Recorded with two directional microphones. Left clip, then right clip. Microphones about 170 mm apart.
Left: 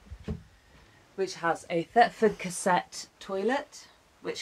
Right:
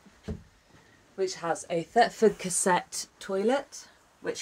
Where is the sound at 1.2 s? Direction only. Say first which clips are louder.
Left 1 dB; 5° right (ahead or behind); by 3.6 s 30° right (ahead or behind).